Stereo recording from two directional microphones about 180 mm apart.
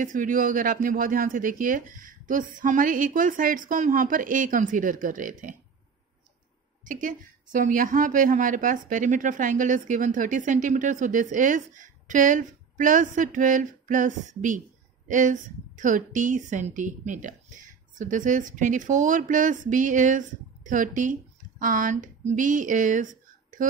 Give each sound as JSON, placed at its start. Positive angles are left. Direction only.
{"t": 0.0, "sound": "a woman's voice", "side_deg": -45}
{"t": 6.8, "sound": "a woman's voice", "side_deg": -45}